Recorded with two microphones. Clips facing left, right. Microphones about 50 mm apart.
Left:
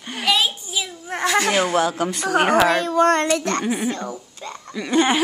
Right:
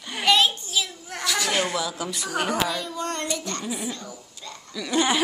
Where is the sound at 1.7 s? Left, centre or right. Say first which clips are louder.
Left 8 dB; left.